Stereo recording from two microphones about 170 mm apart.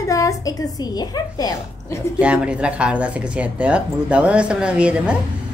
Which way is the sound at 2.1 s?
5° right (ahead or behind).